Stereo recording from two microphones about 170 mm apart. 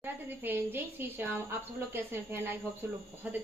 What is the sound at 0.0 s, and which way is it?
A woman's voice, 10° right (ahead or behind).